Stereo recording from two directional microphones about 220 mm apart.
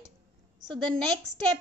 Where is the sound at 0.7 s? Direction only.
Centre (ahead or behind).